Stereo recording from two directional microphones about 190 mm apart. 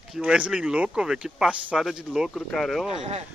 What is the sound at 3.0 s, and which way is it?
Speech, 35° right (ahead or behind).